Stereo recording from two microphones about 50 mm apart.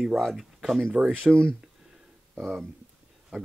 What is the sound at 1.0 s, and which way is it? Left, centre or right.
Speech, right.